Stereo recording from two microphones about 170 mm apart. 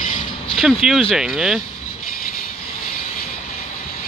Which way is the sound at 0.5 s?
Centre (ahead or behind).